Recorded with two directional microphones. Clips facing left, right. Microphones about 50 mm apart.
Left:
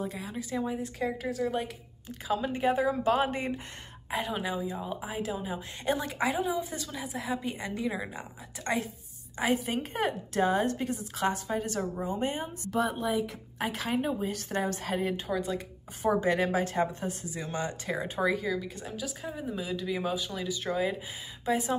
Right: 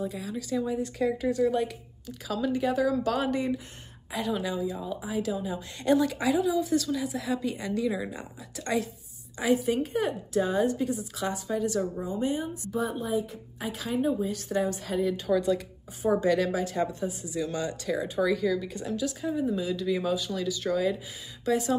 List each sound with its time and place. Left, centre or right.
0.2 s a woman's voice: left
0.7 s speech: centre
2.0 s a woman's voice: left
7.8 s speech: centre
9.4 s a woman's voice: left
15.2 s speech: centre
16.2 s a woman's voice: left
17.0 s a woman's voice: left
17.4 s a woman's voice: left
18.3 s a woman's voice: centre